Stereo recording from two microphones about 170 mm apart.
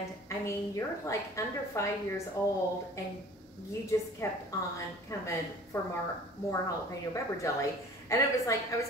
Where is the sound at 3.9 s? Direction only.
15° left (ahead or behind).